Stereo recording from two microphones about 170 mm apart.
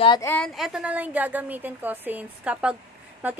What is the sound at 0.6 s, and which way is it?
A woman's voice, 5° right (ahead or behind).